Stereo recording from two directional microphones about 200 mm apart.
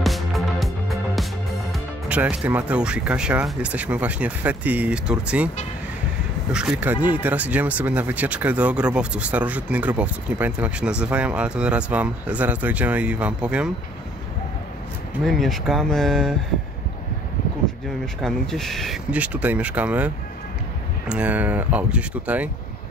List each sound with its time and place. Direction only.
0.0 s music: centre (ahead or behind)
1.7 s speech: 5° right (ahead or behind)
6.5 s speech: 5° right (ahead or behind)
15.2 s speech: centre (ahead or behind)
18.2 s speech: centre (ahead or behind)
21.1 s speech: 5° right (ahead or behind)